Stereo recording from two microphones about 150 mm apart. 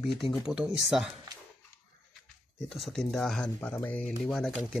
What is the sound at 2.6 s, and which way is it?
Speech, centre (ahead or behind).